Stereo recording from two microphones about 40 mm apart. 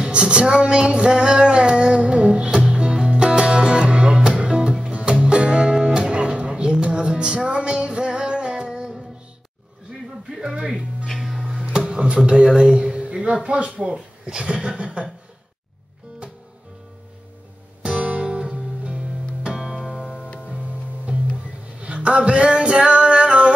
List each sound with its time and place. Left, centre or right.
0.0 s a sound: right
3.0 s music: right
10.2 s music: centre
11.9 s music: right
12.3 s speech: right
17.8 s guitar: right
18.2 s music: right
21.7 s music: right